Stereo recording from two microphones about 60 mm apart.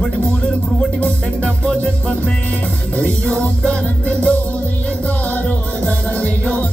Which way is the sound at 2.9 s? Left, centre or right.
Centre.